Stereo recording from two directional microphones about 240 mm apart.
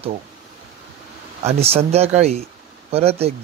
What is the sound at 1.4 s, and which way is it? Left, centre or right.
Speech, right.